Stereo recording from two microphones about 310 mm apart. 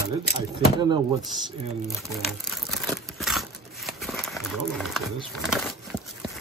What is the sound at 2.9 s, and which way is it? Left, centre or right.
Crumpling, centre.